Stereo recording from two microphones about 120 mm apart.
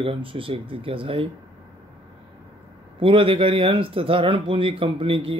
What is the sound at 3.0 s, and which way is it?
A man's voice, 50° right (ahead or behind).